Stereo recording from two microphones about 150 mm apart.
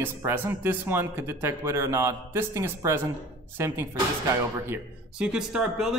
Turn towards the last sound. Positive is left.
turn(degrees=-5)  # may be behind; listen again after turning